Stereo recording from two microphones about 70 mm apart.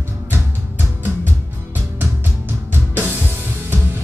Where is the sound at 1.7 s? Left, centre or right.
Right.